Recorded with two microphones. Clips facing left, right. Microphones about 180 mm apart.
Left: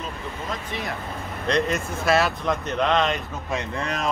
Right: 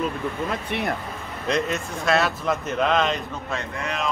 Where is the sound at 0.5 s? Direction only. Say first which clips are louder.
Right 4 dB; 60° right (ahead or behind).